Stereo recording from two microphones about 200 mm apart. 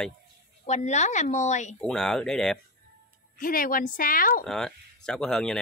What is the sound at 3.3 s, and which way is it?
Speech, 45° left (ahead or behind).